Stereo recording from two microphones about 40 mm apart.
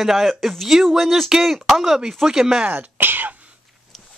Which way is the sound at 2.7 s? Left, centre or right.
Right.